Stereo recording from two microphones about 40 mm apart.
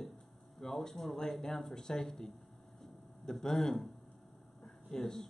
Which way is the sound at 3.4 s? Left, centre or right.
Centre.